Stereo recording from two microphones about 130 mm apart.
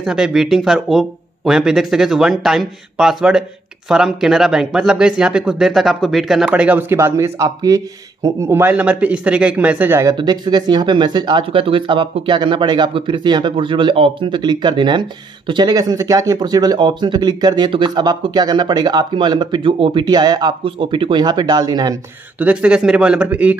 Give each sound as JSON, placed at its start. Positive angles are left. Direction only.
{"t": 0.0, "sound": "speech", "side_deg": -5}
{"t": 10.1, "sound": "speech", "side_deg": -35}
{"t": 22.4, "sound": "speech", "side_deg": -10}